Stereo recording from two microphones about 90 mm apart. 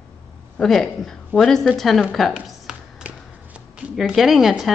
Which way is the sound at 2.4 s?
5° right (ahead or behind).